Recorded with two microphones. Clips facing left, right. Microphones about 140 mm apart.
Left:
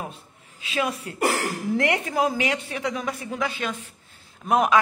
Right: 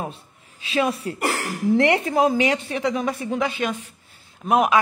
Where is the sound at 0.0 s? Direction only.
30° right (ahead or behind).